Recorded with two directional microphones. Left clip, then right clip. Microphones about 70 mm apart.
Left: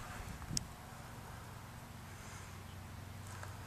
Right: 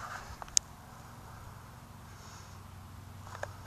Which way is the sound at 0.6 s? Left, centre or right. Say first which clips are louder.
Right 12 dB; right.